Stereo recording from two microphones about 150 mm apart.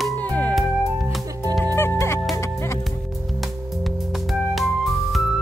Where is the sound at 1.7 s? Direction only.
15° left (ahead or behind).